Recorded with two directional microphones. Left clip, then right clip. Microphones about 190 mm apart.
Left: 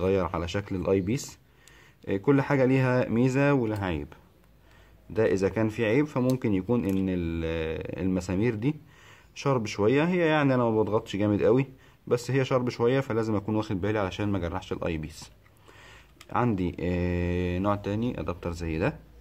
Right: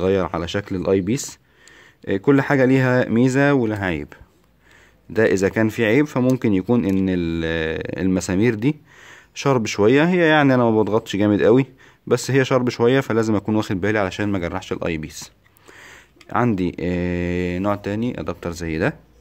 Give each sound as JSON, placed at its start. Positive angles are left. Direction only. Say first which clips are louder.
{"t": 0.0, "sound": "speech", "louder": "right 7 dB", "side_deg": -40}